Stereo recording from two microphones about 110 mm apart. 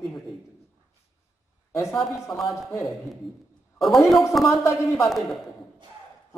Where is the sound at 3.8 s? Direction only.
Centre (ahead or behind).